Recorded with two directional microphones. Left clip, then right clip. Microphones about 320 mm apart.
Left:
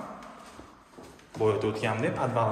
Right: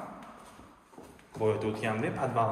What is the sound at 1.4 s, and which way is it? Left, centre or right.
Speech, centre.